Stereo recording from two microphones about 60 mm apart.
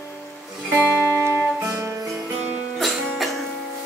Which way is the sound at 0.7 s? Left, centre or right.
Right.